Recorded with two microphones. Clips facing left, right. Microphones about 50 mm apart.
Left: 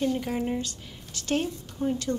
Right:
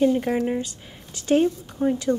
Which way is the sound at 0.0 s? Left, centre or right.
Centre.